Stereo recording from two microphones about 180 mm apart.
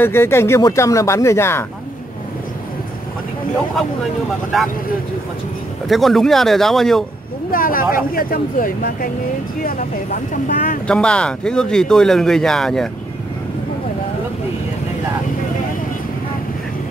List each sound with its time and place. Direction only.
0.0 s speech: 15° left (ahead or behind)
4.5 s speech: centre (ahead or behind)
5.9 s speech: centre (ahead or behind)
7.5 s speech: 50° left (ahead or behind)
10.3 s speech: 50° left (ahead or behind)
10.9 s speech: 5° left (ahead or behind)